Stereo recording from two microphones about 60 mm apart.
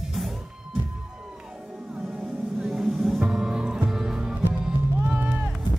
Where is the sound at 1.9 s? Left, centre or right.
Centre.